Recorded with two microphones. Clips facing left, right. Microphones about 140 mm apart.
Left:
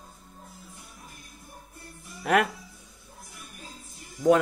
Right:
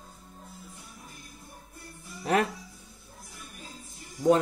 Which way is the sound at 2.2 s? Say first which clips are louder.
Left 2 dB; 30° right (ahead or behind).